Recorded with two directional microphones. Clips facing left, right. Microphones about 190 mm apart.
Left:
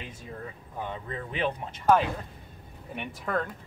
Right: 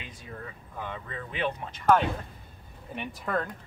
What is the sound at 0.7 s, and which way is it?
Speech, 30° left (ahead or behind).